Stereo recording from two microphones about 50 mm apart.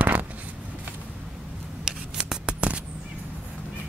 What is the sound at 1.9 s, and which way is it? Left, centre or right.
Scissors, centre.